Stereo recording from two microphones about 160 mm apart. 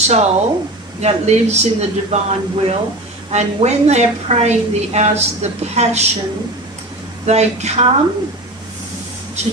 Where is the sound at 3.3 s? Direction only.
45° right (ahead or behind).